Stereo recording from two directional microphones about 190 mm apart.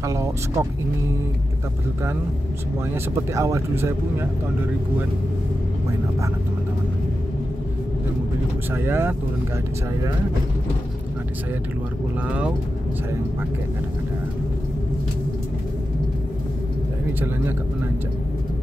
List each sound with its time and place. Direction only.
0.0 s speech: 15° right (ahead or behind)
2.9 s speech: 15° right (ahead or behind)
8.7 s speech: 10° right (ahead or behind)
12.3 s speech: 5° right (ahead or behind)